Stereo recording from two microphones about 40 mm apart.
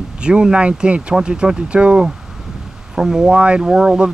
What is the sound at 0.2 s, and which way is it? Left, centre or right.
Mantra, right.